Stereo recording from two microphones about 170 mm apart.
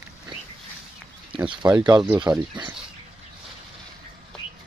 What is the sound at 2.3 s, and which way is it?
Speech, 5° right (ahead or behind).